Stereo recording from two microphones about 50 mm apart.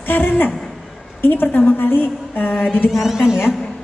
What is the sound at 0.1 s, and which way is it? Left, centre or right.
Speech, left.